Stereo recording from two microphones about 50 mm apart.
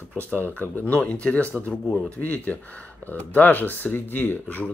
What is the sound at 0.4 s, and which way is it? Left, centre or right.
Speech, left.